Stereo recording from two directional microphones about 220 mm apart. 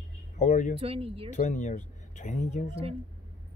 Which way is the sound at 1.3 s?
35° left (ahead or behind).